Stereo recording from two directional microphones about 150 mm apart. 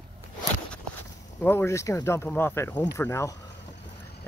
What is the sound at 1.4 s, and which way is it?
Speech, 15° left (ahead or behind).